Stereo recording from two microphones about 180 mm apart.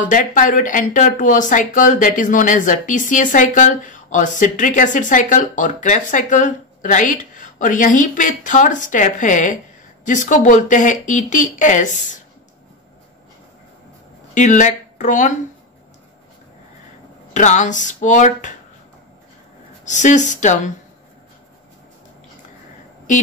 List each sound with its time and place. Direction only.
0.0 s speech: 45° left (ahead or behind)
14.3 s speech: 45° left (ahead or behind)
17.3 s speech: 40° left (ahead or behind)
19.8 s speech: 45° left (ahead or behind)